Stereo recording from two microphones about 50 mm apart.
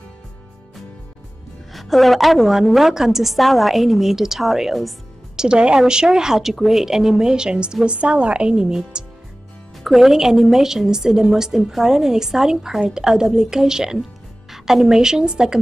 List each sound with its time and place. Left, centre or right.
1.7 s a woman's voice: centre
5.3 s a woman's voice: centre
9.8 s a woman's voice: centre